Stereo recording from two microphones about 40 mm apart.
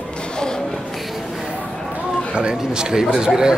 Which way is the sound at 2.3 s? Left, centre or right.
Right.